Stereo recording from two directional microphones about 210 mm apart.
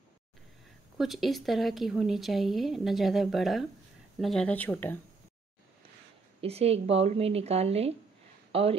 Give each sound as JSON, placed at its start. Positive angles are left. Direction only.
{"t": 0.9, "sound": "speech", "side_deg": 0}
{"t": 6.4, "sound": "a woman's voice", "side_deg": -30}